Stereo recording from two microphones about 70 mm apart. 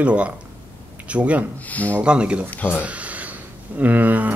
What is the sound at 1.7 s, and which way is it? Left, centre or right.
Speech, left.